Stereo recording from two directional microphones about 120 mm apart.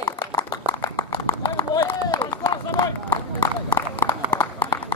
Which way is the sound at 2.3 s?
35° left (ahead or behind).